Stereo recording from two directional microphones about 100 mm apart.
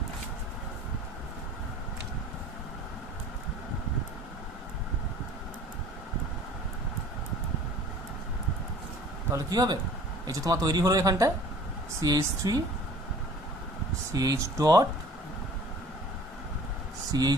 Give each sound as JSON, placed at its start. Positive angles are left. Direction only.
{"t": 9.3, "sound": "speech", "side_deg": -40}
{"t": 14.1, "sound": "speech", "side_deg": -35}
{"t": 17.1, "sound": "speech", "side_deg": -40}